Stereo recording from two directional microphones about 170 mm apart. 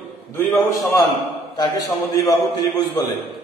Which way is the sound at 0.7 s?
20° left (ahead or behind).